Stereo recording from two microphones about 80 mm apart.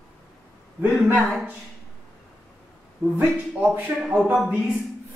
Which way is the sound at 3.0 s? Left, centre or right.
Centre.